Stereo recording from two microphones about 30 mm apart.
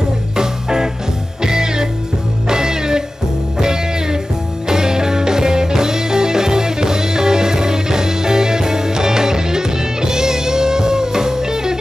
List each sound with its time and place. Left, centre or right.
0.4 s music: right